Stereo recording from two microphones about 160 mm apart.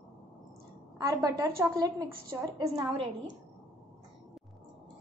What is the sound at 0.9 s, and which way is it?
A woman's voice, 25° right (ahead or behind).